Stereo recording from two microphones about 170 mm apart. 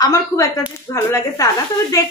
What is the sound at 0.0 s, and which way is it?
Speech, 15° left (ahead or behind).